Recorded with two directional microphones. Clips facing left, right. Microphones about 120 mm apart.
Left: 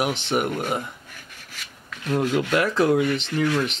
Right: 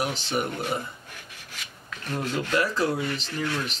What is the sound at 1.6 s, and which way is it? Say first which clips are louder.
Rub: left 6 dB; centre (ahead or behind).